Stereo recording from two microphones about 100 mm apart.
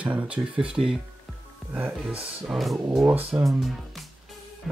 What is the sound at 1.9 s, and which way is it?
Speech, 5° right (ahead or behind).